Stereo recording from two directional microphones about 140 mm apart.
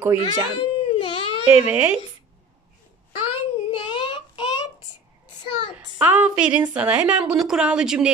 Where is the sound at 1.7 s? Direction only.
10° right (ahead or behind).